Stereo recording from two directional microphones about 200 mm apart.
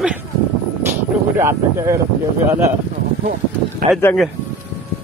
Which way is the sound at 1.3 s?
15° right (ahead or behind).